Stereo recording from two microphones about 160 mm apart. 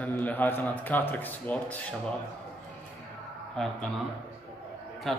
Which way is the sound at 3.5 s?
5° left (ahead or behind).